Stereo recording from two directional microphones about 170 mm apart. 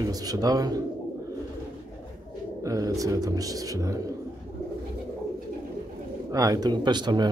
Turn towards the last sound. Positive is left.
turn(degrees=-25)  # may be behind; listen again after turning